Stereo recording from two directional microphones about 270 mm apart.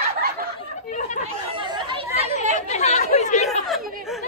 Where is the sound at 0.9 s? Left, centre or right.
Left.